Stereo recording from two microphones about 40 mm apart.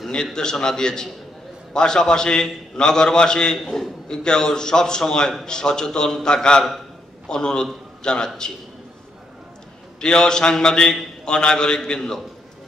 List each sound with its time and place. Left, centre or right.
0.1 s a man's voice: centre
9.9 s a man's voice: centre